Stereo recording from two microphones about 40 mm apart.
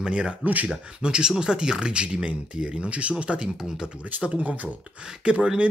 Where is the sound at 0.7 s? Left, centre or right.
Right.